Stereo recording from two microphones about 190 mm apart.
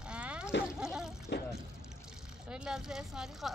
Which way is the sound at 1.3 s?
65° left (ahead or behind).